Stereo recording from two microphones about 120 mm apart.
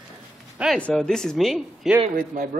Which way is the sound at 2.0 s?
90° right.